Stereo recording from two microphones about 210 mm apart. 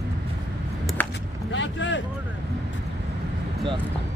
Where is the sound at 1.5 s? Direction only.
60° left (ahead or behind).